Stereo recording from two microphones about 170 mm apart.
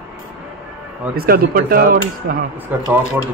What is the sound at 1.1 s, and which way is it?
Speech, 60° right (ahead or behind).